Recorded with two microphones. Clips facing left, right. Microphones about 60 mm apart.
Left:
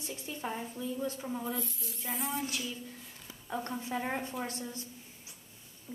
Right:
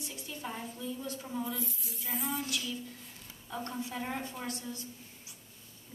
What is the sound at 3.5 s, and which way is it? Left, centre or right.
Speech, left.